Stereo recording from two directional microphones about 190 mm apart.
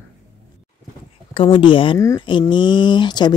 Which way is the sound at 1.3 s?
25° left (ahead or behind).